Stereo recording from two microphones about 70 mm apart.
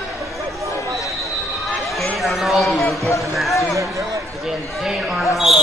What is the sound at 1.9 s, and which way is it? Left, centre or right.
A man's voice, centre.